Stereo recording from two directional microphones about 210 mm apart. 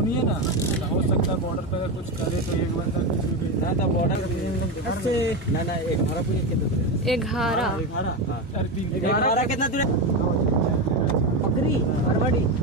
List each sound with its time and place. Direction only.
7.1 s speech: centre (ahead or behind)
9.0 s speech: 45° left (ahead or behind)